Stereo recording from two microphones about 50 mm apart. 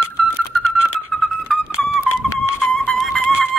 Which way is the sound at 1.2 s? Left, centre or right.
Centre.